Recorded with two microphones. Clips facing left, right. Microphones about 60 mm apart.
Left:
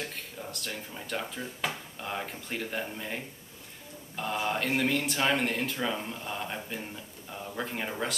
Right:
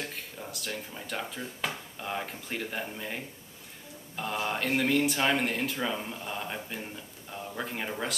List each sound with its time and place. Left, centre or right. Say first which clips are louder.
0.0 s speech: even; centre